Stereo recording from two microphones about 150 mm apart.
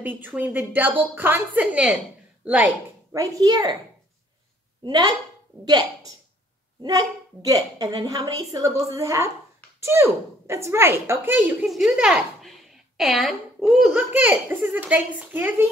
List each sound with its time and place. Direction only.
0.0 s a woman's voice: 10° right (ahead or behind)
3.1 s a woman's voice: 20° right (ahead or behind)
4.8 s a woman's voice: 25° right (ahead or behind)